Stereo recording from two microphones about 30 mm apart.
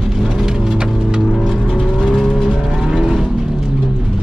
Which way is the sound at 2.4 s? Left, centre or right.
Centre.